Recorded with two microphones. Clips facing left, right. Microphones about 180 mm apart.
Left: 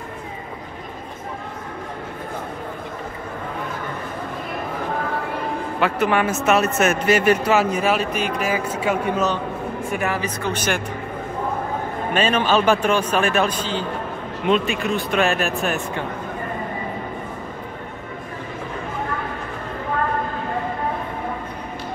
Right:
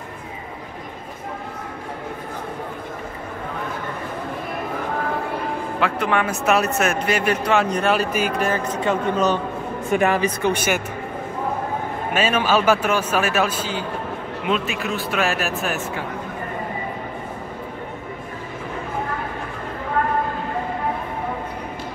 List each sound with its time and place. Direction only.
5.8 s speech: 5° left (ahead or behind)
9.9 s speech: 25° right (ahead or behind)
10.4 s a man's voice: 10° right (ahead or behind)
12.1 s a man's voice: 5° right (ahead or behind)